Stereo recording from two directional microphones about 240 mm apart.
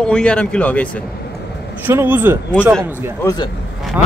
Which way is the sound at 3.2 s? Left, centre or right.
Centre.